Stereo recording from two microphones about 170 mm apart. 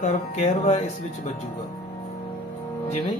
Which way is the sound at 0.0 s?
40° left (ahead or behind).